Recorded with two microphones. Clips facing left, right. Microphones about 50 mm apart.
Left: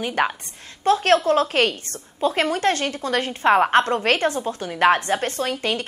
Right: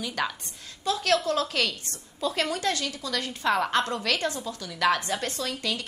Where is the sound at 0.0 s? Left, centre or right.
Left.